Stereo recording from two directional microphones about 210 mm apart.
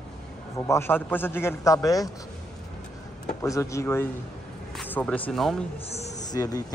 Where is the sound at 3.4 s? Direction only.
15° left (ahead or behind).